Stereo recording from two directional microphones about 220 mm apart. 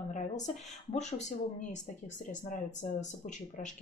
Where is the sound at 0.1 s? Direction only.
35° left (ahead or behind).